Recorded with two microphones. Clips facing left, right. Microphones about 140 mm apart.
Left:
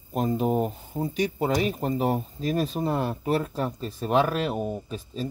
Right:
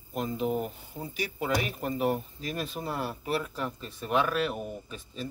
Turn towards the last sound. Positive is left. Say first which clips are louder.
# left 7 dB
turn(degrees=35)  # may be behind; listen again after turning